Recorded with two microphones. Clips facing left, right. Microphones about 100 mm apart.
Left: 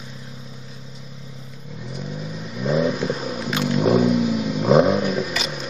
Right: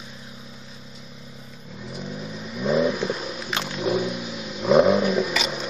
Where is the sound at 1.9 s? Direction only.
Centre (ahead or behind).